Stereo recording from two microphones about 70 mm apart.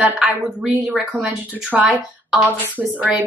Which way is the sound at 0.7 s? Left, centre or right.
Centre.